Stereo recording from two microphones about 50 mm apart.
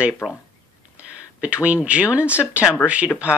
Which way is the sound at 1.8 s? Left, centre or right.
Right.